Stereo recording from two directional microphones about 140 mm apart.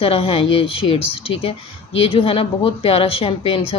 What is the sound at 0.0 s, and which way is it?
Speech, 45° left (ahead or behind).